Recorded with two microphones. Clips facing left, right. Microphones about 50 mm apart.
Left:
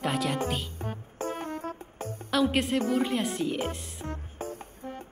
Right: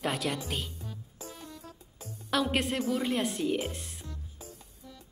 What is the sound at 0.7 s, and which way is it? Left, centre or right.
Music, left.